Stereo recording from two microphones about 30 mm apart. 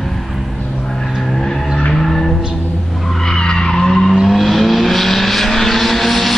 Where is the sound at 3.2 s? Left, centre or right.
Left.